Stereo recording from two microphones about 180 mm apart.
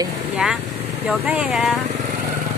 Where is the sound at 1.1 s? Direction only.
5° right (ahead or behind).